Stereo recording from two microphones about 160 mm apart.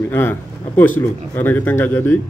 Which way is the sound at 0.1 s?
15° left (ahead or behind).